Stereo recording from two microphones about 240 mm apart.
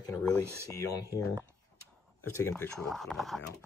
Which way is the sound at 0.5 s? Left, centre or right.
Centre.